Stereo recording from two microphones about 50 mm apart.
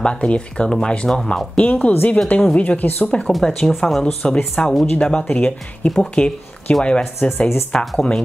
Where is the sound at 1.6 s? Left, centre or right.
Left.